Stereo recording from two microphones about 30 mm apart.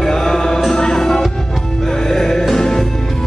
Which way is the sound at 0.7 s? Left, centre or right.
Centre.